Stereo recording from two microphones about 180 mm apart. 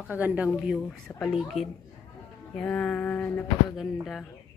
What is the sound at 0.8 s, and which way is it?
A woman's voice, 5° left (ahead or behind).